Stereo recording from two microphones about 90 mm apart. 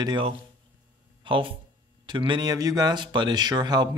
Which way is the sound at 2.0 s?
60° right (ahead or behind).